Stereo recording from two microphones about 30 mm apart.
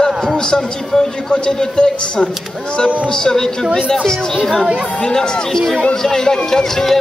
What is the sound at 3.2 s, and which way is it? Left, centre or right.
Speech, left.